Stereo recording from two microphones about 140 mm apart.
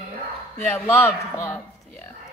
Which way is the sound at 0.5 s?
15° left (ahead or behind).